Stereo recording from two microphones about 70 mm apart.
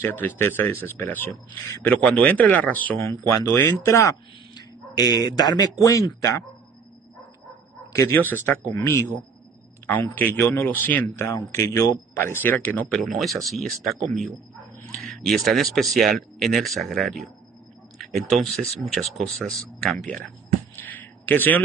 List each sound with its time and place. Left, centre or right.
0.0 s a man's voice: left
3.8 s speech: left
4.6 s speech: left
8.1 s a man's voice: left
10.1 s speech: left
11.1 s a man's voice: left
12.9 s speech: centre
20.7 s a sound: left